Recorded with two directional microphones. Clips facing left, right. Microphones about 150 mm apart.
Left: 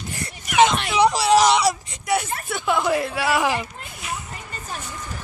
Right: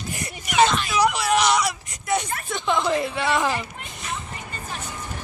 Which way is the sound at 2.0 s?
5° left (ahead or behind).